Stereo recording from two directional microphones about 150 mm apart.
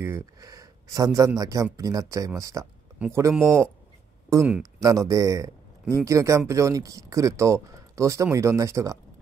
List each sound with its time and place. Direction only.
0.0 s a man's voice: 20° right (ahead or behind)